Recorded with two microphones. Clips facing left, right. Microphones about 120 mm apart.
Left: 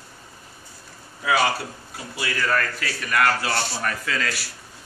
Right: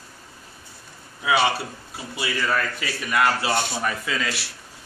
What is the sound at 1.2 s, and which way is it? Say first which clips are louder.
Speech: right 1 dB; 25° right (ahead or behind).